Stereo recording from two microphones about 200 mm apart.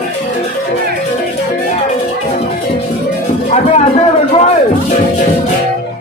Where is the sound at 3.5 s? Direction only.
35° left (ahead or behind).